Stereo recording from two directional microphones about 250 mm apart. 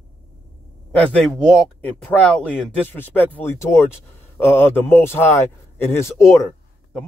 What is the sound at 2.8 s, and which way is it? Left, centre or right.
Speech, centre.